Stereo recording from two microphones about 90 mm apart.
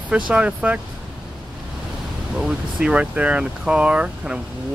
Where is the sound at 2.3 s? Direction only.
10° right (ahead or behind).